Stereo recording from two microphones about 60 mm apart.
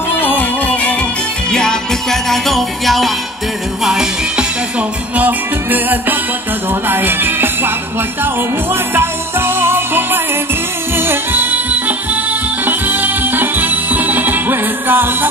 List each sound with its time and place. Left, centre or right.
0.4 s music: left
1.5 s music: centre
3.8 s music: centre
5.1 s music: right
8.9 s music: right